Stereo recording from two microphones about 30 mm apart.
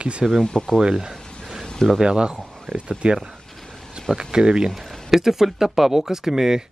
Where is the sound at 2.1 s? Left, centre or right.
Right.